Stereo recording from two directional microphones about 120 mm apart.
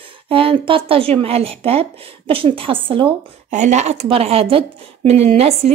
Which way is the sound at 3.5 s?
75° right (ahead or behind).